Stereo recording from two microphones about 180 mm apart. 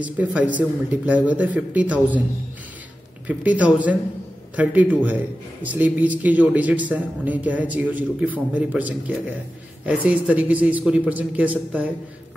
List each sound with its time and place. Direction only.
0.0 s a man's voice: 10° right (ahead or behind)
3.3 s a man's voice: 10° right (ahead or behind)
5.0 s a man's voice: 10° right (ahead or behind)